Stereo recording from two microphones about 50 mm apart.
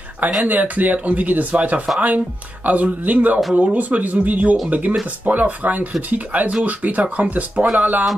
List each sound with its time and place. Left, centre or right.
0.5 s speech: right